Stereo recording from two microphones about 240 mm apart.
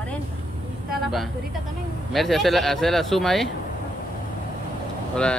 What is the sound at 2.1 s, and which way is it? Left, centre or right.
Speech, centre.